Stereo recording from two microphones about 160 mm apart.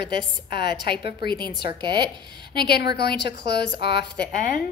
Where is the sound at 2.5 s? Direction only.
80° left.